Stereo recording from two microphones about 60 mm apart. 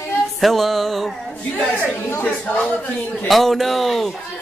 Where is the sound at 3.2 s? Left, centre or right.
Centre.